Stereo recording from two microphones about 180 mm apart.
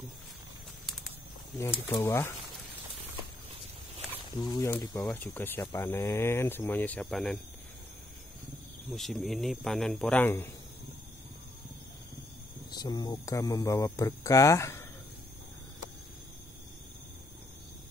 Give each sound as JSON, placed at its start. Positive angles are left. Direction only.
{"t": 1.6, "sound": "speech", "side_deg": 15}
{"t": 4.4, "sound": "speech", "side_deg": 15}
{"t": 8.9, "sound": "speech", "side_deg": 0}
{"t": 12.8, "sound": "speech", "side_deg": 25}